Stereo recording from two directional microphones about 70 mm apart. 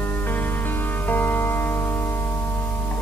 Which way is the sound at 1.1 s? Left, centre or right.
Left.